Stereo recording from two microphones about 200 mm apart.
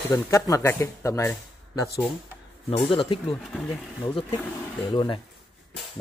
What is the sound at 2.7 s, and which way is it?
Speech, 25° left (ahead or behind).